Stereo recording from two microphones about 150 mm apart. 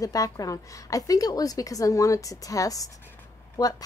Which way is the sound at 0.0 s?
25° left (ahead or behind).